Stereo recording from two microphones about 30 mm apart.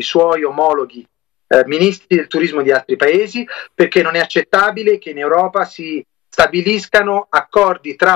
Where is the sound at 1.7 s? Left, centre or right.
Right.